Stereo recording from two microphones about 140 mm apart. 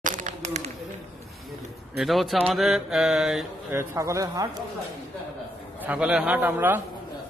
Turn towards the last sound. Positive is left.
turn(degrees=-15)  # may be behind; listen again after turning